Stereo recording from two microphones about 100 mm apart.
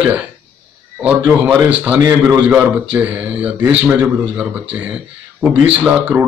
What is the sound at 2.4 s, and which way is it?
A man's voice, 15° right (ahead or behind).